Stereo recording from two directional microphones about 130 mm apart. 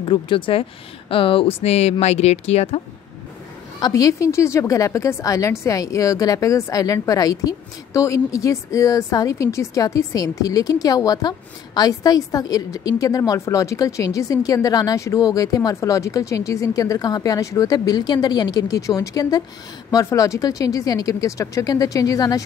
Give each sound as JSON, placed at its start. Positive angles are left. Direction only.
{"t": 0.0, "sound": "speech", "side_deg": 40}
{"t": 3.8, "sound": "a woman's voice", "side_deg": 30}